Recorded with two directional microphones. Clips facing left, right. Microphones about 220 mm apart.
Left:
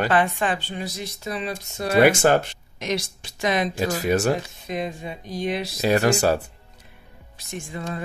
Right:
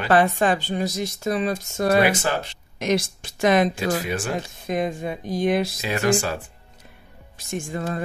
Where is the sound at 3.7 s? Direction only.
40° left (ahead or behind).